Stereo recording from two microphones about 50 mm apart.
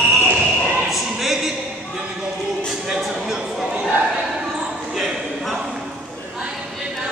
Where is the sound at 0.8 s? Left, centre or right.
Centre.